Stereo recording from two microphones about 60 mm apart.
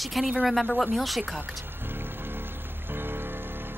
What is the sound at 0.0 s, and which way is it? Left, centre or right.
Speech, centre.